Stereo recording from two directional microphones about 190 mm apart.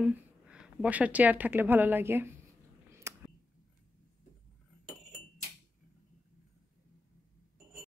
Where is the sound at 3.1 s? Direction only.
15° right (ahead or behind).